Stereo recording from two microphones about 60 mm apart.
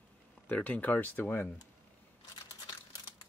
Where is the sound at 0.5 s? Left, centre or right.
Left.